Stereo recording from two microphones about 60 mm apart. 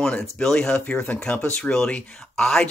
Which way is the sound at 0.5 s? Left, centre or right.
Centre.